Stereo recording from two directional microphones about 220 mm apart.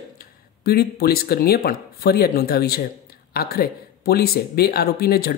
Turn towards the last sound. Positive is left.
turn(degrees=45)  # may be behind; listen again after turning